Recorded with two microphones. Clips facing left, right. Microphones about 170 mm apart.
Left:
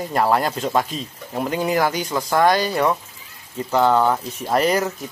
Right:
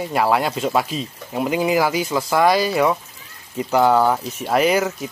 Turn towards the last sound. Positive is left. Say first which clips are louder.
# right 2 dB
turn(degrees=-5)  # may be behind; listen again after turning